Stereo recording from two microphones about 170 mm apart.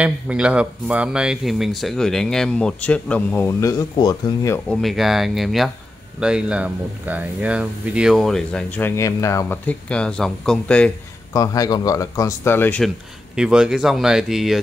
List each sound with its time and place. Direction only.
0.0 s speech: 5° right (ahead or behind); by 4.6 s 20° left (ahead or behind)
4.6 s speech: centre (ahead or behind)
11.3 s speech: 20° left (ahead or behind)
13.4 s speech: 5° right (ahead or behind)